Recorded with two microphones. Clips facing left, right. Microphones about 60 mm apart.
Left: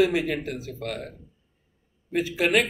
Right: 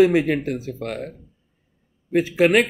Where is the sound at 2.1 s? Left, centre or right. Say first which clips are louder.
Right 6 dB; right.